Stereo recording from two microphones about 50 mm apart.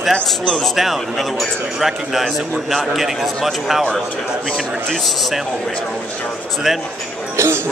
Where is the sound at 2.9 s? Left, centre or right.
Centre.